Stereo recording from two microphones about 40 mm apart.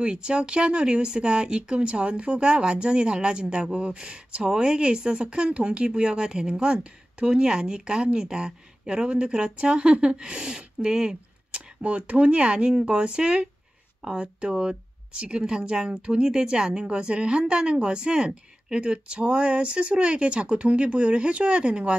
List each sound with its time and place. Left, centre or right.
0.0 s speech: right
11.8 s speech: right